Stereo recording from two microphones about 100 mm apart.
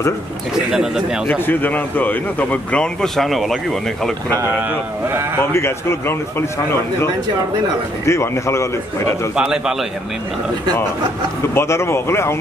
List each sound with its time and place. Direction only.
0.7 s speech: 5° right (ahead or behind)
1.2 s speech: 20° left (ahead or behind); by 3.5 s centre (ahead or behind)
4.6 s speech: 15° right (ahead or behind)
5.4 s a man's voice: 25° left (ahead or behind)
8.0 s a man's voice: 30° left (ahead or behind)
9.3 s speech: 5° right (ahead or behind)
11.5 s a man's voice: 25° left (ahead or behind)